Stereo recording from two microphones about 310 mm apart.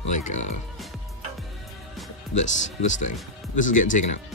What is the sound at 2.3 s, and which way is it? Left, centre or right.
Speech, left.